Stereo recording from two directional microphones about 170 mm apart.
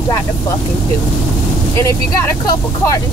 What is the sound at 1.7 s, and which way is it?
Speech, 15° left (ahead or behind).